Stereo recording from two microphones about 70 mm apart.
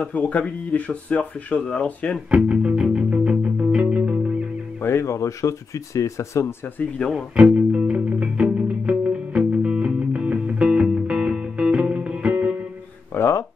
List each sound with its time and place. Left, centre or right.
0.0 s speech: left
2.3 s music: centre
4.8 s speech: left
7.0 s speech: centre
7.5 s music: centre
13.1 s a sound: left